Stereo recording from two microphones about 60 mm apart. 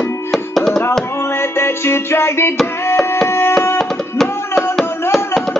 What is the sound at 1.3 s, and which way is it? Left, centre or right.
Music, left.